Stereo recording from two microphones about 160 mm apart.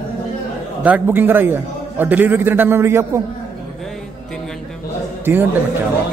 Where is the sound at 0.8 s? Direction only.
10° right (ahead or behind).